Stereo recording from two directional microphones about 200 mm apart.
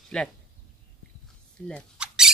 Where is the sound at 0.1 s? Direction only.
5° left (ahead or behind).